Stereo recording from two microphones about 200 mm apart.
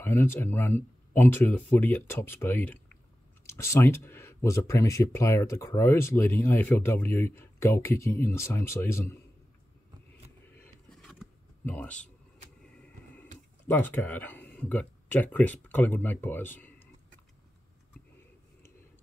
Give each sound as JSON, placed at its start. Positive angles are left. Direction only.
{"t": 0.0, "sound": "speech", "side_deg": 10}
{"t": 10.6, "sound": "a sound", "side_deg": 0}
{"t": 13.7, "sound": "speech", "side_deg": 10}